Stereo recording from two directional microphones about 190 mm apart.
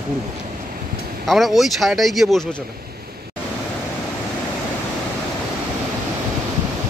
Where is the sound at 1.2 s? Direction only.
Centre (ahead or behind).